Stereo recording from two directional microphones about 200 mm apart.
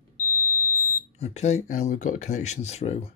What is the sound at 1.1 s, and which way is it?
Speech, 35° left (ahead or behind).